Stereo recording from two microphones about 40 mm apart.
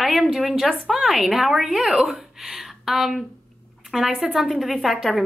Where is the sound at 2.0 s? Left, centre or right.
Centre.